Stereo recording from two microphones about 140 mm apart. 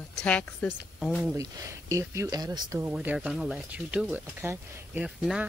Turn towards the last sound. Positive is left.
turn(degrees=-5)  # may be behind; listen again after turning